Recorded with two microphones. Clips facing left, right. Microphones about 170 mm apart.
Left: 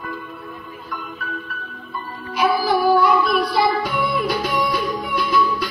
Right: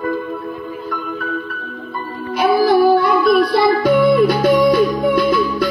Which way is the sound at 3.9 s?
50° right (ahead or behind).